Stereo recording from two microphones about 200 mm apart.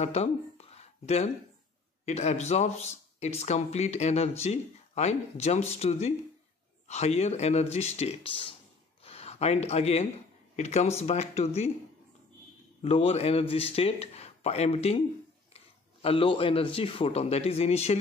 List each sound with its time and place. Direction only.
0.0 s speech: 30° left (ahead or behind)
12.8 s a man's voice: 30° left (ahead or behind)